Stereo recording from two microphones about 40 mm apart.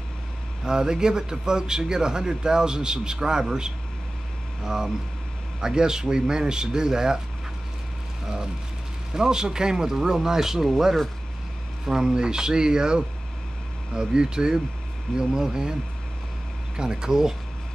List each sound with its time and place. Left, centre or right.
0.7 s speech: centre
9.1 s speech: centre
11.8 s speech: centre
16.7 s speech: centre